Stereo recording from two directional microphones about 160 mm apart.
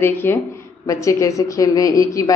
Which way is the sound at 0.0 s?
15° left (ahead or behind).